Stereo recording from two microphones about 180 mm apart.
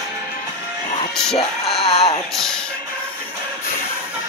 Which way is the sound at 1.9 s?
35° left (ahead or behind).